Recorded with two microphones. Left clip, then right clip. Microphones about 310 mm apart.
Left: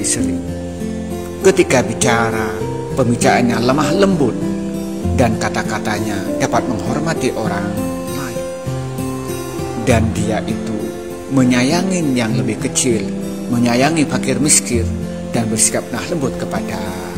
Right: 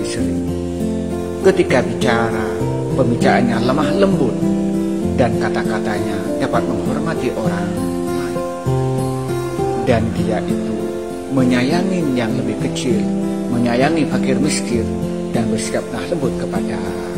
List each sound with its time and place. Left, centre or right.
1.4 s speech: centre
5.1 s speech: centre
9.8 s speech: left
13.7 s speech: centre